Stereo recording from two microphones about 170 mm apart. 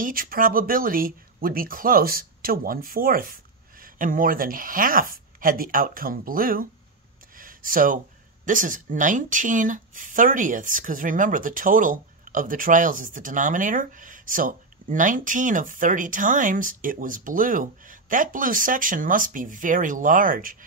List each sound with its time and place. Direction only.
0.0 s speech: 55° right (ahead or behind)
7.3 s a sound: 55° right (ahead or behind)
8.5 s speech: 50° right (ahead or behind)